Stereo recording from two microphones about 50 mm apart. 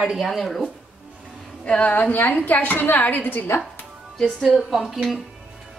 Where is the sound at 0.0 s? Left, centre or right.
Centre.